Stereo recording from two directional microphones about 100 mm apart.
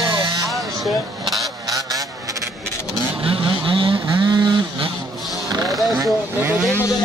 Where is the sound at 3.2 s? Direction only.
60° right (ahead or behind).